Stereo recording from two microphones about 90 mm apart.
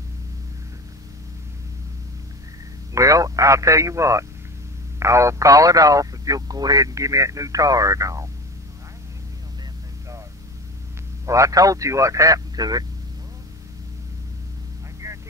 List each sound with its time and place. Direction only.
2.9 s speech: 40° right (ahead or behind)
11.2 s speech: 35° right (ahead or behind)
15.0 s vehicle: 35° right (ahead or behind)